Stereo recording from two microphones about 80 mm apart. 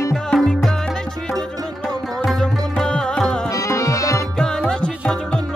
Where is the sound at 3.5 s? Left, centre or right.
Left.